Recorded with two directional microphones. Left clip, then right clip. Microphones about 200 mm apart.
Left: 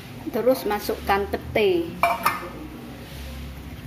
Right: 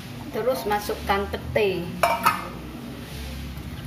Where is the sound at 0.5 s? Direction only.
50° left (ahead or behind).